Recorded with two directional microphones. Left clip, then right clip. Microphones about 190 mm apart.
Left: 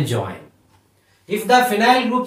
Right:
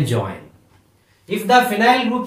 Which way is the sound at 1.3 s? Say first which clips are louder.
Even; 10° right (ahead or behind).